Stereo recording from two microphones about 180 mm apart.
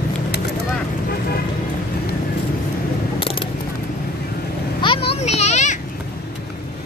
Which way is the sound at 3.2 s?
30° left (ahead or behind).